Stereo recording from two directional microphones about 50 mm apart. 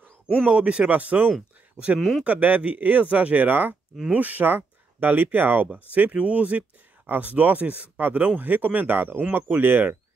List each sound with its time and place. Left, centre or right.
0.4 s speech: right
0.8 s speech: right
2.0 s speech: centre
2.2 s speech: right